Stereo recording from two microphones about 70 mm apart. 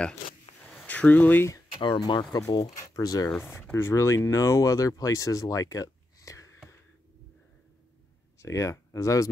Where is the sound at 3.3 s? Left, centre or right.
Left.